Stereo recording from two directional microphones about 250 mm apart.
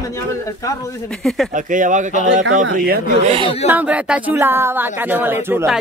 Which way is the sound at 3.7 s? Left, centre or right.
Centre.